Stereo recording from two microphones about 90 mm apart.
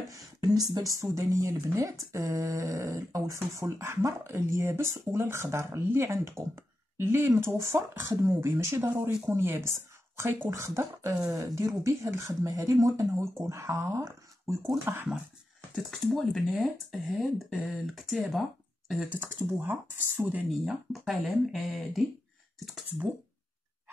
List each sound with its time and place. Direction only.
0.1 s speech: 45° right (ahead or behind)
15.7 s speech: 5° left (ahead or behind)
19.0 s speech: 20° right (ahead or behind)
20.4 s speech: centre (ahead or behind)